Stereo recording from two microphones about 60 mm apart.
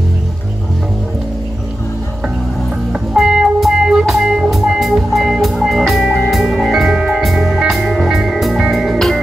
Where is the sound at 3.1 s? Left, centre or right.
Centre.